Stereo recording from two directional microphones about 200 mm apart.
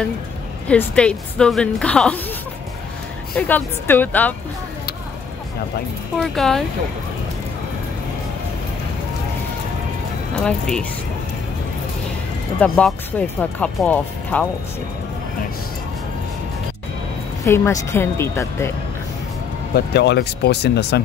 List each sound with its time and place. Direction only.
0.7 s a woman's voice: 5° left (ahead or behind)
3.3 s speech: 10° left (ahead or behind)
6.1 s a woman's voice: 5° left (ahead or behind)
10.4 s a woman's voice: 5° left (ahead or behind)
12.5 s speech: 5° left (ahead or behind)
17.5 s speech: 10° left (ahead or behind)
19.7 s speech: 55° left (ahead or behind)